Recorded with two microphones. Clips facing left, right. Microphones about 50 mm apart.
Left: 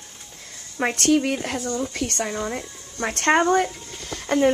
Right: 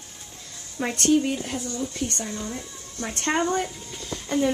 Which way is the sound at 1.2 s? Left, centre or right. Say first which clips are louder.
Left 3 dB; left.